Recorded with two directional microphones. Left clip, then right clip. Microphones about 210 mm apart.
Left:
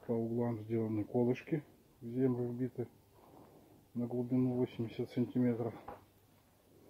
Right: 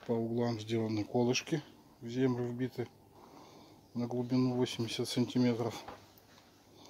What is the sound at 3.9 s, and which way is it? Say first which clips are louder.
Speech: right 2 dB; 15° right (ahead or behind).